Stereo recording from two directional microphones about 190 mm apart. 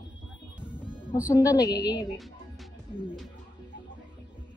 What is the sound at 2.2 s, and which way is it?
Music, centre (ahead or behind).